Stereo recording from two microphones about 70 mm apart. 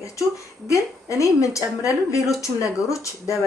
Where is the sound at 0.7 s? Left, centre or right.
Left.